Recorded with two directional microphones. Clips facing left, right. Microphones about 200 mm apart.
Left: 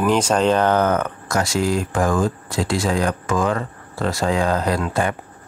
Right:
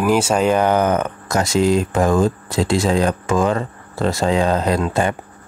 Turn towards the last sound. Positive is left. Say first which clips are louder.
# right 3 dB
turn(degrees=-25)  # may be behind; listen again after turning